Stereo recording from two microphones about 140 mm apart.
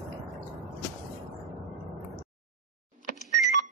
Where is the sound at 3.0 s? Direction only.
65° left (ahead or behind).